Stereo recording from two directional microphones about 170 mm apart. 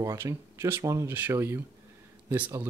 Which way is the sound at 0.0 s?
15° right (ahead or behind).